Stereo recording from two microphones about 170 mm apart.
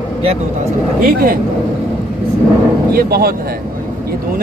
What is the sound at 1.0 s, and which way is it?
Speech, 60° right (ahead or behind).